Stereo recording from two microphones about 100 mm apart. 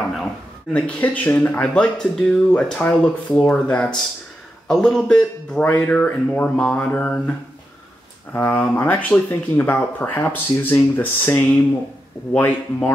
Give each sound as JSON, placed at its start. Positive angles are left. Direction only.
{"t": 0.7, "sound": "speech", "side_deg": 15}
{"t": 8.3, "sound": "speech", "side_deg": 25}